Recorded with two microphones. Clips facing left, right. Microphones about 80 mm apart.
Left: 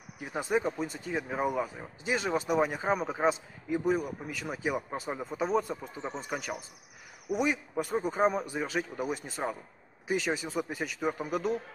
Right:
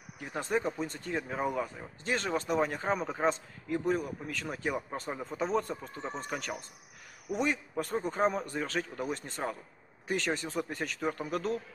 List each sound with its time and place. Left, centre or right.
0.2 s speech: centre